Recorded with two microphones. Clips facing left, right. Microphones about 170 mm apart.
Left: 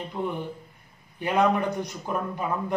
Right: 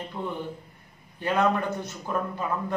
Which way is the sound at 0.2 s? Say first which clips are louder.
Left 3 dB; 15° left (ahead or behind).